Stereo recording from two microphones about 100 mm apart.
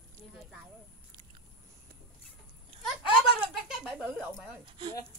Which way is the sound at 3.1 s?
5° right (ahead or behind).